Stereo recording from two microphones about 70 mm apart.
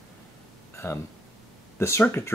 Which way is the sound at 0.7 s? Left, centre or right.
Left.